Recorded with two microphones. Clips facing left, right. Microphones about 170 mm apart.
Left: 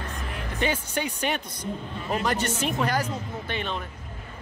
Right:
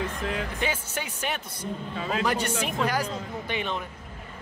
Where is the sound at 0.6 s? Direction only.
5° right (ahead or behind).